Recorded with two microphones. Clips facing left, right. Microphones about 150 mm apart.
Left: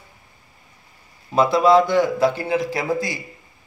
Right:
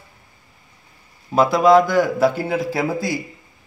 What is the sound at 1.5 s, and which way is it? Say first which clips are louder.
A man's voice: right 1 dB; centre (ahead or behind).